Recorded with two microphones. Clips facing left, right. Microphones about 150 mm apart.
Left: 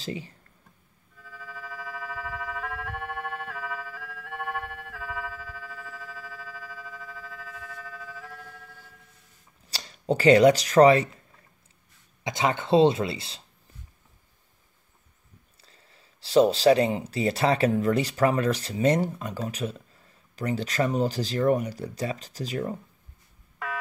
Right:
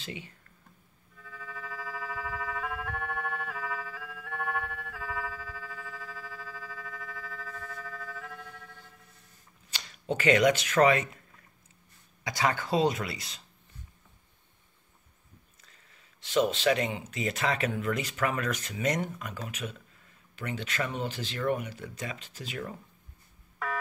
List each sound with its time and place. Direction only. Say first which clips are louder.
0.0 s speech: left 7 dB; 35° left (ahead or behind)
1.3 s a sound: left 1 dB; 5° left (ahead or behind)
2.0 s siren: left 1 dB; 10° right (ahead or behind)
2.8 s music: left 1 dB; 10° left (ahead or behind)
4.3 s a sound: left 1 dB; 5° left (ahead or behind)
9.7 s speech: left 6 dB; 35° left (ahead or behind)
12.2 s speech: left 3 dB; 20° left (ahead or behind)
15.6 s speech: left 4 dB; 30° left (ahead or behind)